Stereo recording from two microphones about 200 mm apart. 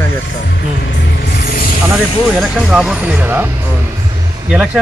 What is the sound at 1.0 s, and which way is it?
Music, 55° left (ahead or behind).